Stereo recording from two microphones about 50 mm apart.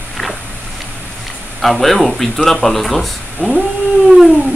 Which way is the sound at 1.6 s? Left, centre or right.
Centre.